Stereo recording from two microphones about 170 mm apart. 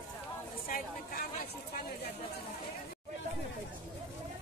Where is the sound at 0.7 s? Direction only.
60° left (ahead or behind).